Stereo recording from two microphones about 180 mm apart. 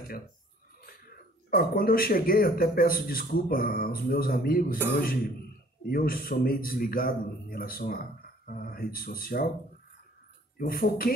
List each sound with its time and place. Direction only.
1.5 s speech: 55° left (ahead or behind)
5.9 s speech: 55° left (ahead or behind)
10.6 s speech: 55° left (ahead or behind)